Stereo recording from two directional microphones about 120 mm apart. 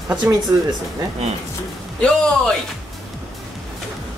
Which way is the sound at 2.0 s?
5° left (ahead or behind).